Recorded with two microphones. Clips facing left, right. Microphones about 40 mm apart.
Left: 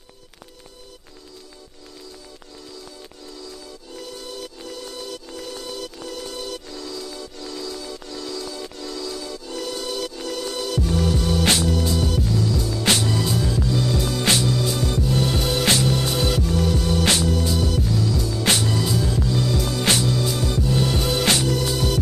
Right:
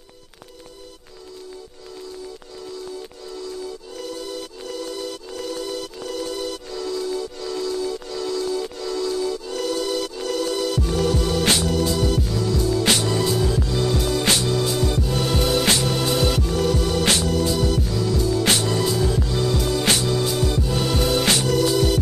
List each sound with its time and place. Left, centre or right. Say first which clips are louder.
5.5 s music: right 4 dB; centre
8.5 s music: right 7 dB; centre
16.4 s music: right 1 dB; centre